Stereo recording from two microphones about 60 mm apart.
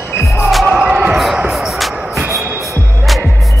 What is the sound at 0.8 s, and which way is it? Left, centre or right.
Basketball bounce, centre.